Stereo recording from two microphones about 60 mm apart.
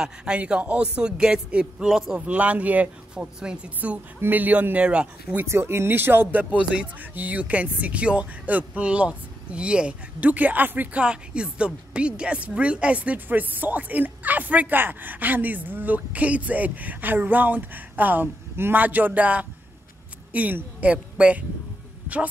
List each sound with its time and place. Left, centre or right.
0.0 s a man's voice: centre
2.1 s speech: right
3.2 s speech: centre
3.8 s speech: right
5.5 s speech: right
6.5 s speech: right
22.0 s dog: right